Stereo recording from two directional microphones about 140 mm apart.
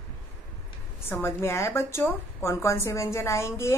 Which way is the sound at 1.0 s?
15° left (ahead or behind).